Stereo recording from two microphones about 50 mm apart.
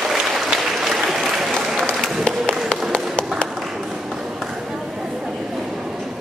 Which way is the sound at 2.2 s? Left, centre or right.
Centre.